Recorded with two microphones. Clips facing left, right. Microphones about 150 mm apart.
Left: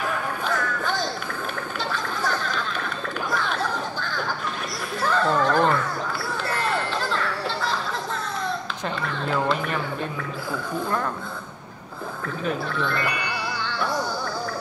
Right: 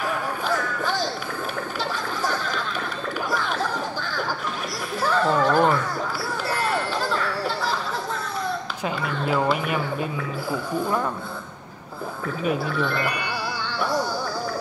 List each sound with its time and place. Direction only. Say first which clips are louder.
3.3 s chatter: even; 5° right (ahead or behind)
5.0 s music: right 1 dB; 5° right (ahead or behind)
8.8 s speech: right 2 dB; 10° right (ahead or behind)
12.4 s speech: right 2 dB; 5° right (ahead or behind)